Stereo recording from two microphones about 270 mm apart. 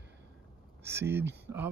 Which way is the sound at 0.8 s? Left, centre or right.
Centre.